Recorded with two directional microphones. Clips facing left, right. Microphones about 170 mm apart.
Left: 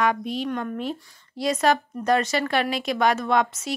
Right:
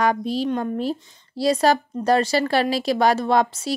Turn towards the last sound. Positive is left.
turn(degrees=-35)  # may be behind; listen again after turning